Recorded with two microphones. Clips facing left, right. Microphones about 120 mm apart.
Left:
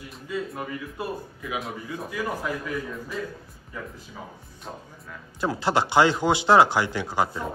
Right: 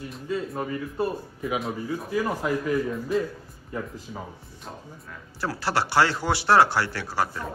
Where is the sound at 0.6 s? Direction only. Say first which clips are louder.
Right 5 dB; 30° right (ahead or behind).